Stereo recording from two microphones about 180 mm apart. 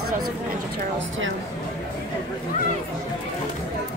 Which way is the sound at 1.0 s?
90° right.